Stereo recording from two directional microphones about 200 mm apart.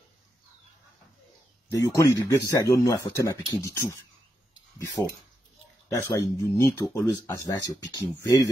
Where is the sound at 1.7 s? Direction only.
15° left (ahead or behind).